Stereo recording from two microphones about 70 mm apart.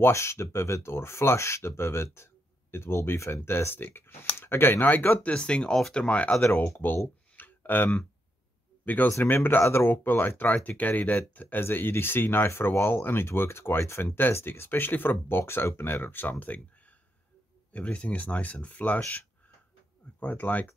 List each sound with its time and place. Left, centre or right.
0.0 s speech: left
5.3 s speech: centre
6.4 s speech: left
7.3 s a sound: left
8.8 s speech: left
17.7 s speech: centre
20.2 s speech: left